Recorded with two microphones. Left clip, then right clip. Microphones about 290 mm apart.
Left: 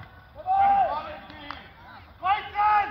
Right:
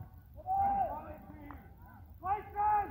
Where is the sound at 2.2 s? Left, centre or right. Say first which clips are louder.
Left 10 dB; left.